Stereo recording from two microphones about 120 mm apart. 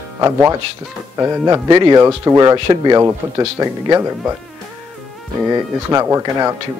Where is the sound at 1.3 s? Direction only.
25° right (ahead or behind).